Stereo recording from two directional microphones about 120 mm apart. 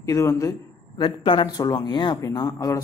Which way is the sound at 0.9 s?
45° left (ahead or behind).